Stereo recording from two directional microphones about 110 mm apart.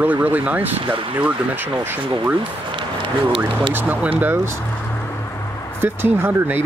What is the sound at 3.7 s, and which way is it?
Speech, 15° right (ahead or behind).